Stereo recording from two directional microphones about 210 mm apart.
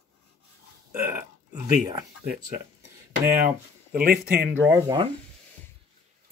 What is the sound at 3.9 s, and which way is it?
Speech, 45° right (ahead or behind).